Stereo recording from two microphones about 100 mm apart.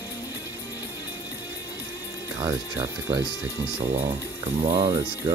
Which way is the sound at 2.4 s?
25° right (ahead or behind).